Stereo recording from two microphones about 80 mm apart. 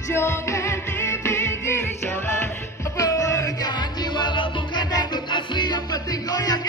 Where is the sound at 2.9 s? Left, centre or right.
Left.